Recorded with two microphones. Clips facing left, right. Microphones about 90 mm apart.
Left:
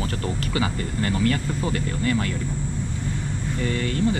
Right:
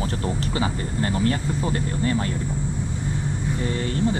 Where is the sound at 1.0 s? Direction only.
25° right (ahead or behind).